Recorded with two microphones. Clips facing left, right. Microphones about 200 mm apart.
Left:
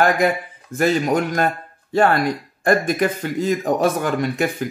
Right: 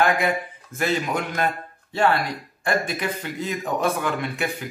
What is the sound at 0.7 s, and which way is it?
Speech, 45° left (ahead or behind).